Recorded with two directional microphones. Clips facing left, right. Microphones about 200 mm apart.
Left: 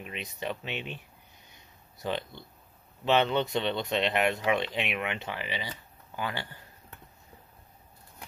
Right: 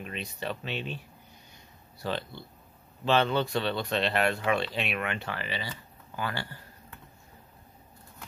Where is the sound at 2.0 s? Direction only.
20° left (ahead or behind).